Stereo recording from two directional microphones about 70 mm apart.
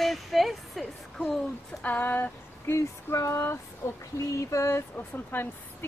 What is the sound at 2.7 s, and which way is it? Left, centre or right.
Speech, left.